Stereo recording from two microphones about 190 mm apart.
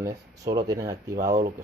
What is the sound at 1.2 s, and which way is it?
Speech, 45° right (ahead or behind).